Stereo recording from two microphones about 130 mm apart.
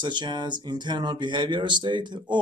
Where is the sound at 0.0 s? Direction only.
35° right (ahead or behind).